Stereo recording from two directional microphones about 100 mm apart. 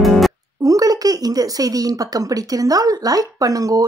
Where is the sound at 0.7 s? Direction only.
35° right (ahead or behind).